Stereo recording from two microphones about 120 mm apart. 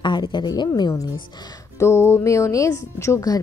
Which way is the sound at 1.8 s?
20° left (ahead or behind).